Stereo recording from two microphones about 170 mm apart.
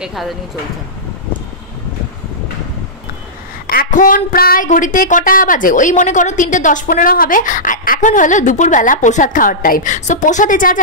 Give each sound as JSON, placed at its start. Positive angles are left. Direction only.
{"t": 0.0, "sound": "speech", "side_deg": 0}
{"t": 3.6, "sound": "speech", "side_deg": 55}